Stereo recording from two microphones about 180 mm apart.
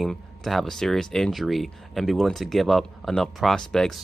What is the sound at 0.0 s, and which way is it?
Speech, centre (ahead or behind).